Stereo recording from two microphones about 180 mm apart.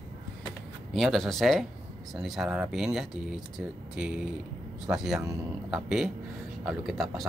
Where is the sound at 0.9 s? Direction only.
Centre (ahead or behind).